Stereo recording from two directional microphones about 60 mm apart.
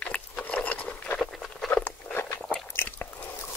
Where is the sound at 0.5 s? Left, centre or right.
Left.